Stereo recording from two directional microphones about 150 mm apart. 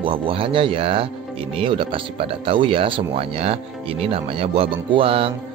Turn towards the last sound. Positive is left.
turn(degrees=-40)  # may be behind; listen again after turning